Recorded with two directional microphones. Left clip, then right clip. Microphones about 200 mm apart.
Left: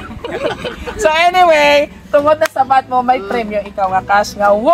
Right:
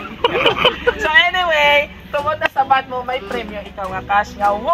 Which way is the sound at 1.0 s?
60° left (ahead or behind).